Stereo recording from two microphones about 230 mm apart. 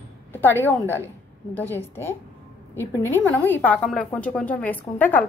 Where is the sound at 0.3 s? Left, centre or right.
Centre.